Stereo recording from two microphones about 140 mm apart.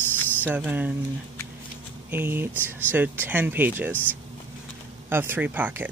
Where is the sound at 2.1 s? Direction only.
15° right (ahead or behind).